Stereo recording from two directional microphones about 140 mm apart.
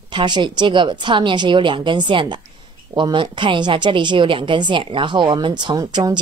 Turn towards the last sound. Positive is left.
turn(degrees=-30)  # may be behind; listen again after turning